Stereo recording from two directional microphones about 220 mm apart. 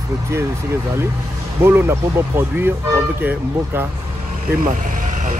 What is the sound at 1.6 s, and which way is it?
Speech, 10° right (ahead or behind).